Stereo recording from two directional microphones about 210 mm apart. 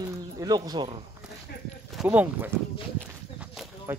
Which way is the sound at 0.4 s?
20° right (ahead or behind).